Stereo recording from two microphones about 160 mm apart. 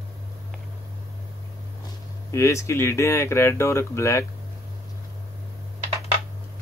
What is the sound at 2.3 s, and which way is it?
Speech, 20° left (ahead or behind).